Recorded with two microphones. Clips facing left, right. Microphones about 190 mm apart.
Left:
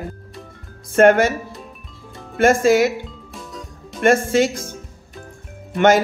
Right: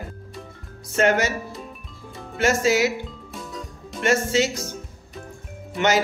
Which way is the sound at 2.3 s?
50° left (ahead or behind).